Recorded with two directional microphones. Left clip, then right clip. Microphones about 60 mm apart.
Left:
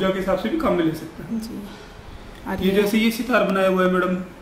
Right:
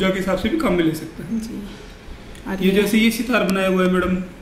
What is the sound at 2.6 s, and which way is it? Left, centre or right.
A woman's voice, centre.